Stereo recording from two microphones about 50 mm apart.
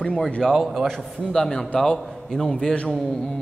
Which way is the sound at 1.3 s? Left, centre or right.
Centre.